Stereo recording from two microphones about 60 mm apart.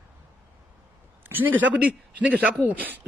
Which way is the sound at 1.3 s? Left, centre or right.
Right.